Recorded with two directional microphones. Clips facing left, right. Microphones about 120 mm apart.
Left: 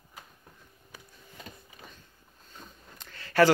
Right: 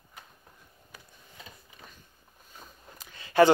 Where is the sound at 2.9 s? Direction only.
15° right (ahead or behind).